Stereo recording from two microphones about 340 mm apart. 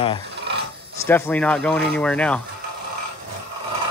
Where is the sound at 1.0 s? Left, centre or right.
Centre.